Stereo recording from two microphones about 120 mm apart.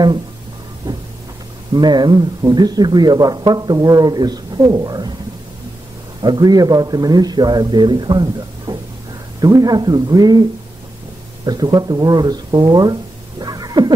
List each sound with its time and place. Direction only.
1.7 s speech: 35° right (ahead or behind)
6.2 s speech: 35° right (ahead or behind)
11.4 s speech: 35° right (ahead or behind)
13.4 s a sound: 35° right (ahead or behind)